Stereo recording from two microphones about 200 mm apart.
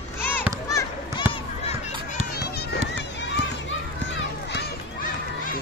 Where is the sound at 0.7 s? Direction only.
15° left (ahead or behind).